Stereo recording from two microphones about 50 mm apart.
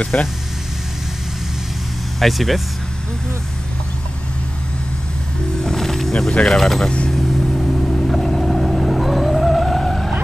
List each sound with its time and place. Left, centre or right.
0.1 s speech: left
2.1 s speech: centre
5.6 s music: centre
6.4 s speech: centre
7.1 s vehicle: centre